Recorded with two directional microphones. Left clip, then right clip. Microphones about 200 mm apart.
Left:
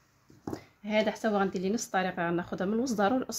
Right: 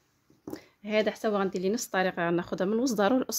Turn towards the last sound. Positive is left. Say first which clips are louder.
# right 2 dB
turn(degrees=-55)  # may be behind; listen again after turning